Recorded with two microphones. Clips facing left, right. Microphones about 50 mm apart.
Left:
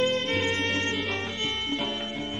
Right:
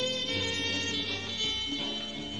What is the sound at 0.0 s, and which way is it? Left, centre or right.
Music, left.